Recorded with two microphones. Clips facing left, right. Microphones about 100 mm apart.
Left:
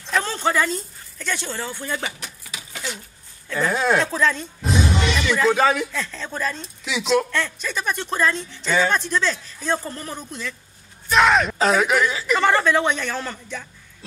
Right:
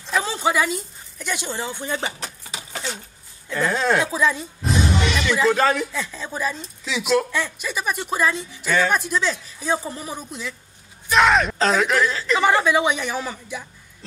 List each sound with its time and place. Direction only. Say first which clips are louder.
0.0 s speech: even; 5° right (ahead or behind)
2.1 s a sound: right 3 dB; 35° right (ahead or behind)
3.5 s speech: even; 10° left (ahead or behind)
4.0 s speech: even; 10° right (ahead or behind)
5.9 s speech: even; 10° right (ahead or behind)
11.1 s speech: even; centre (ahead or behind)
12.4 s speech: even; 10° right (ahead or behind)